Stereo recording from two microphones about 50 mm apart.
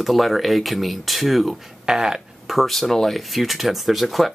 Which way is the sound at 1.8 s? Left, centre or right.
Centre.